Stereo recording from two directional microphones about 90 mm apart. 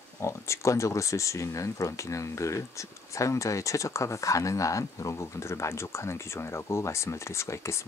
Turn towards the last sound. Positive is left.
turn(degrees=30)  # may be behind; listen again after turning